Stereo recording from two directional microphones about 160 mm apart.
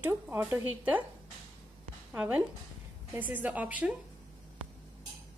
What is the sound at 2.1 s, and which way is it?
A woman's voice, 10° right (ahead or behind).